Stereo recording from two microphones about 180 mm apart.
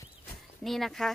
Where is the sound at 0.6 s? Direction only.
Centre (ahead or behind).